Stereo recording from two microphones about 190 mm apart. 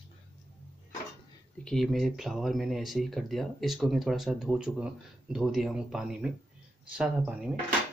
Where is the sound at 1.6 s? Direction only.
Centre (ahead or behind).